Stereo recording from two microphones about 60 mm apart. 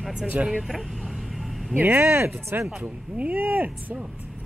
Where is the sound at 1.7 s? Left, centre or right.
Right.